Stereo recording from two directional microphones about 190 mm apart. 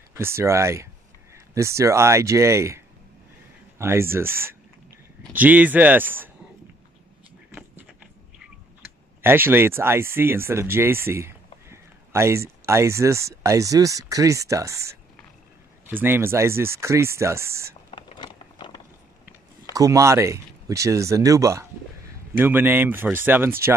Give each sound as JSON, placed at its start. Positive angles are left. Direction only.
{"t": 0.1, "sound": "speech", "side_deg": -15}
{"t": 9.2, "sound": "speech", "side_deg": -10}
{"t": 15.9, "sound": "speech", "side_deg": -10}
{"t": 17.9, "sound": "a sound", "side_deg": 25}
{"t": 19.7, "sound": "speech", "side_deg": -15}